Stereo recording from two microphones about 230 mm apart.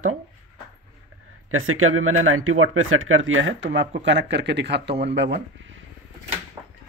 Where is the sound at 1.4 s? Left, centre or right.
Right.